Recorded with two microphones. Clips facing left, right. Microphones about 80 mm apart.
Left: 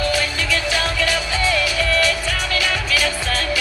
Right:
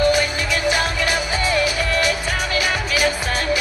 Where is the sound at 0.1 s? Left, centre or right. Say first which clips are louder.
Right 2 dB; right.